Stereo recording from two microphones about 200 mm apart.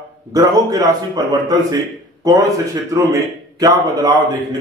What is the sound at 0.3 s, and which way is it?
A man's voice, 20° right (ahead or behind).